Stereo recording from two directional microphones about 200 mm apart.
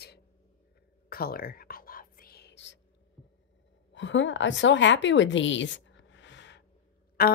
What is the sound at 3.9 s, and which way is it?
A woman's voice, 65° left (ahead or behind).